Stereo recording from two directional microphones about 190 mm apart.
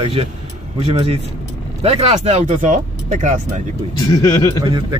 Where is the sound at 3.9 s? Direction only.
20° left (ahead or behind).